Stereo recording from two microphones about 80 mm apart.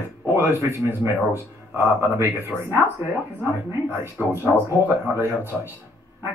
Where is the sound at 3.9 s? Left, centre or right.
Right.